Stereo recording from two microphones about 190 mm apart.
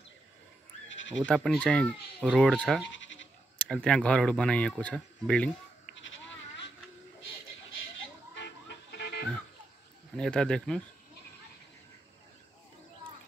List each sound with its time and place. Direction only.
0.8 s bleat: 75° left (ahead or behind)
1.2 s speech: 5° left (ahead or behind)
2.1 s speech: 5° right (ahead or behind)
2.9 s bleat: 80° left
3.5 s speech: 5° left (ahead or behind)
5.9 s sheep: 80° left
8.4 s music: 65° left (ahead or behind)
10.1 s speech: 5° left (ahead or behind)